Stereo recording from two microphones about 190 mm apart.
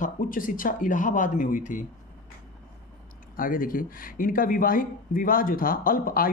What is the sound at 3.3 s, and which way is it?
Speech, 45° left (ahead or behind).